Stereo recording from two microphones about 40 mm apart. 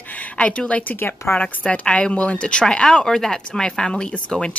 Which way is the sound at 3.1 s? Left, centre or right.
Centre.